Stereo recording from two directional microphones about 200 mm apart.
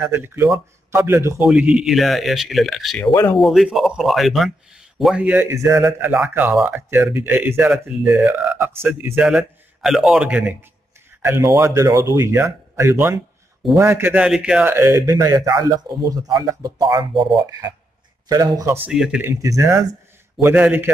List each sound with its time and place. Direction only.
0.0 s speech: 10° right (ahead or behind)
18.9 s speech: 5° right (ahead or behind)